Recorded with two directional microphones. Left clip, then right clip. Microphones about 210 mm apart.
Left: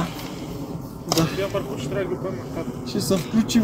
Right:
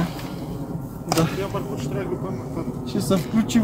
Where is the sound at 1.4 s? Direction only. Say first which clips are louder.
Left 2 dB; 60° right (ahead or behind).